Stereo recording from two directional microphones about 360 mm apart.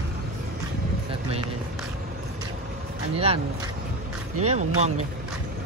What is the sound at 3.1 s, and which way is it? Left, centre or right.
Speech, centre.